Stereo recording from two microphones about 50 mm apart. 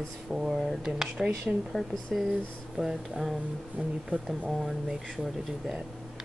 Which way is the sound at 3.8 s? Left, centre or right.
Right.